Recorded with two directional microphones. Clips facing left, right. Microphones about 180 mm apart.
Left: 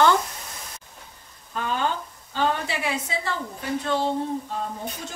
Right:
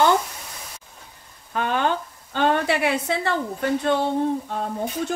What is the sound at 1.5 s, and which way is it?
Frying, 65° right (ahead or behind).